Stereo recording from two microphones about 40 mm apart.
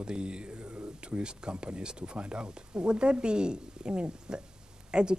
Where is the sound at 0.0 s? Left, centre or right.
Right.